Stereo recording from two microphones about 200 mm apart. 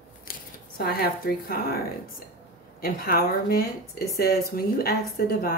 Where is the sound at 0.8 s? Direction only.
50° left (ahead or behind).